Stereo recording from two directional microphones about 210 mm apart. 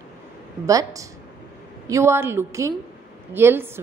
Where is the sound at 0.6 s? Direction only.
15° right (ahead or behind).